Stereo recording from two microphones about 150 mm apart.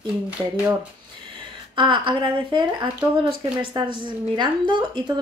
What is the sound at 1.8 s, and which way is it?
Speech, 35° right (ahead or behind).